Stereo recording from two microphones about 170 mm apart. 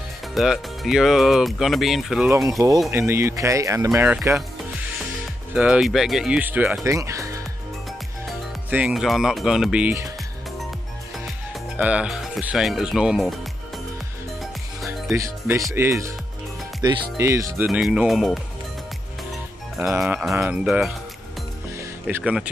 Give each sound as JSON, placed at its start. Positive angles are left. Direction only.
{"t": 0.3, "sound": "speech", "side_deg": 0}
{"t": 2.2, "sound": "speech", "side_deg": -15}
{"t": 5.5, "sound": "speech", "side_deg": -5}
{"t": 8.3, "sound": "speech", "side_deg": -5}
{"t": 11.7, "sound": "speech", "side_deg": -10}
{"t": 14.9, "sound": "speech", "side_deg": -15}
{"t": 17.6, "sound": "speech", "side_deg": -5}
{"t": 20.0, "sound": "speech", "side_deg": -5}
{"t": 21.7, "sound": "music", "side_deg": -10}